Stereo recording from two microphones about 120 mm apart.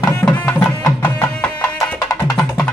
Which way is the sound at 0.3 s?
15° left (ahead or behind).